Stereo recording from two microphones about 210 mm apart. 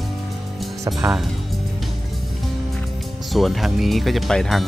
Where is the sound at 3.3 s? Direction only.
Centre (ahead or behind).